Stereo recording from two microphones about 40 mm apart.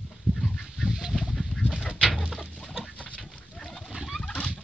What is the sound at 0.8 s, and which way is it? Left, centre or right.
Goose, centre.